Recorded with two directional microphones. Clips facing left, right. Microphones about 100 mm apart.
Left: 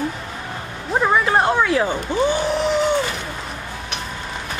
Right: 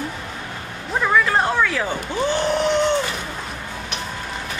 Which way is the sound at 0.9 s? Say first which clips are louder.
Left 1 dB; 25° left (ahead or behind).